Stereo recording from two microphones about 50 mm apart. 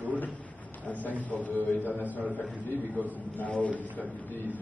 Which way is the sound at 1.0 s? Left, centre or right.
Left.